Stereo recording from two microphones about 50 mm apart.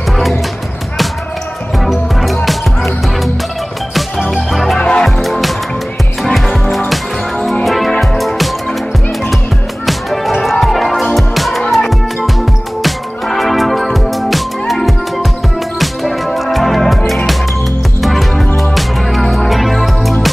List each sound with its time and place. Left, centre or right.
1.8 s music: centre
3.9 s music: centre
4.7 s music: centre
5.0 s music: centre
7.6 s music: centre
9.8 s music: centre